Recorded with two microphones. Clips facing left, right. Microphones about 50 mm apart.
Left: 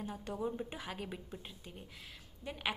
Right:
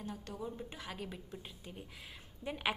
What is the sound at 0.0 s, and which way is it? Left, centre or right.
Speech, centre.